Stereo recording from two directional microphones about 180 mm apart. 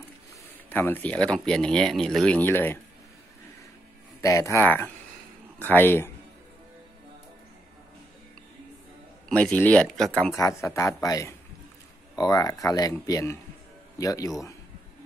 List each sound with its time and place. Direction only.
0.7 s speech: 10° left (ahead or behind)
4.2 s speech: 20° left (ahead or behind)
9.3 s speech: 5° left (ahead or behind)
10.3 s speech: 15° left (ahead or behind)